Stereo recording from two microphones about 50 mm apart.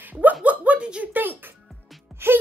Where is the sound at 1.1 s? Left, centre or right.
Right.